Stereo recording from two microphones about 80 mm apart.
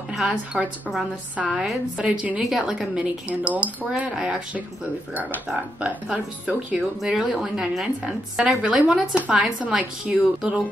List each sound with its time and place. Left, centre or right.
0.5 s a woman's voice: centre
1.3 s speech: centre
5.8 s speech: centre
7.0 s speech: centre